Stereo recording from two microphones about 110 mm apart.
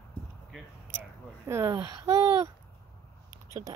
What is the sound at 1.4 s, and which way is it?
Speech, 25° right (ahead or behind).